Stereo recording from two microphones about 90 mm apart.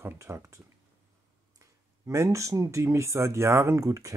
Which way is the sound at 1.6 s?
35° right (ahead or behind).